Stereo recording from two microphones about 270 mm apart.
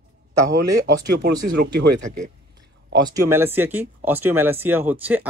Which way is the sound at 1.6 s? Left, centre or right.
Right.